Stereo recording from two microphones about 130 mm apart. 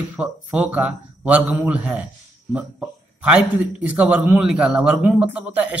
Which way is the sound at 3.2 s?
10° right (ahead or behind).